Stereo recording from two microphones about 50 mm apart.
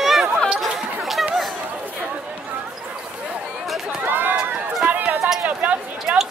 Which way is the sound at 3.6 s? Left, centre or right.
Centre.